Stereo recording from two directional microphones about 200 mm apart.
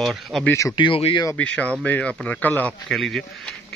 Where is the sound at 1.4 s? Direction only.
5° left (ahead or behind).